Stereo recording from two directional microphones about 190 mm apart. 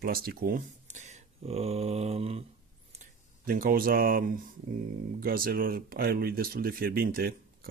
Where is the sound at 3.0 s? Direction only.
50° right (ahead or behind).